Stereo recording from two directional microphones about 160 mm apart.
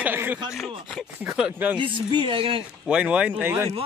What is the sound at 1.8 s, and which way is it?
Speech, 30° right (ahead or behind).